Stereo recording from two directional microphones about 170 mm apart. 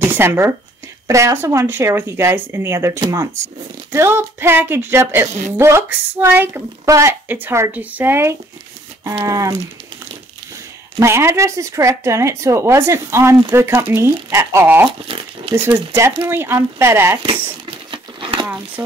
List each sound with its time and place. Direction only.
0.1 s speech: 15° right (ahead or behind)
11.0 s speech: 15° right (ahead or behind)
17.2 s crumpling: 30° right (ahead or behind)
18.8 s speech: 15° right (ahead or behind)